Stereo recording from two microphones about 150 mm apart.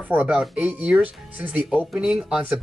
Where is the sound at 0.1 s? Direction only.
5° right (ahead or behind).